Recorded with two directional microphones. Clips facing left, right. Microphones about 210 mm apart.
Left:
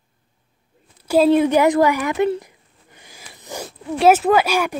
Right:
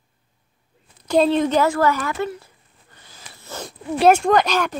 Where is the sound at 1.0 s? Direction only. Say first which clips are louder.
Left 3 dB; 10° left (ahead or behind).